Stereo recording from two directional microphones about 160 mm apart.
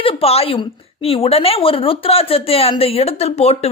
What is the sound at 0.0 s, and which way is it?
A woman's voice, 40° left (ahead or behind).